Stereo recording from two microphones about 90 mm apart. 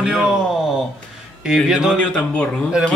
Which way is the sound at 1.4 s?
5° right (ahead or behind).